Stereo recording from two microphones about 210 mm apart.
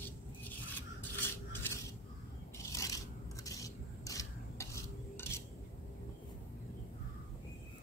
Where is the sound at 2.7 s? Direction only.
15° left (ahead or behind).